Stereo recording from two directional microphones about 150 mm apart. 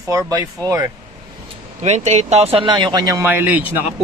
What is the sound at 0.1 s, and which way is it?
Speech, 20° right (ahead or behind).